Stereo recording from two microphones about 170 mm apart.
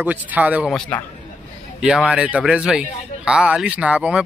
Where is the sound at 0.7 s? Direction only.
5° left (ahead or behind).